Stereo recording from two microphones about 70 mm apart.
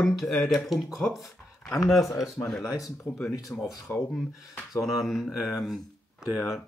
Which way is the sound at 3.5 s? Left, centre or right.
Left.